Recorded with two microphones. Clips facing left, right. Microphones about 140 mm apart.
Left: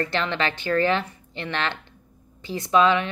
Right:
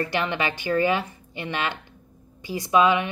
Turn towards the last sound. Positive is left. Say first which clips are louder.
# even
turn(degrees=-15)  # may be behind; listen again after turning